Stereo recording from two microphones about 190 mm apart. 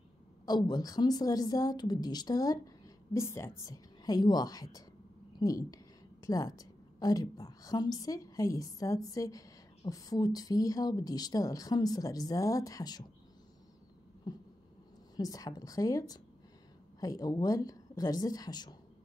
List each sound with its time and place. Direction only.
0.5 s a woman's voice: 20° left (ahead or behind)
14.3 s a sound: 20° left (ahead or behind)
15.1 s a woman's voice: 20° left (ahead or behind)